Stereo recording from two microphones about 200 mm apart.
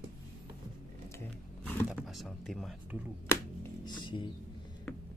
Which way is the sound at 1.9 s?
Centre (ahead or behind).